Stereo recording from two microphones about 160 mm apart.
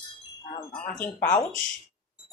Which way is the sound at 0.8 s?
10° left (ahead or behind).